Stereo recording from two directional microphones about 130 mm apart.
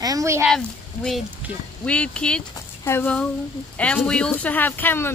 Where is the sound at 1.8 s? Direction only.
10° left (ahead or behind).